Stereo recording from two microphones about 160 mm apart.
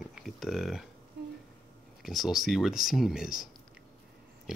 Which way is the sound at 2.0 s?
Centre (ahead or behind).